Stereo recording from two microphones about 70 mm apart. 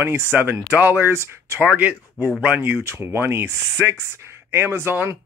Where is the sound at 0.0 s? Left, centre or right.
Right.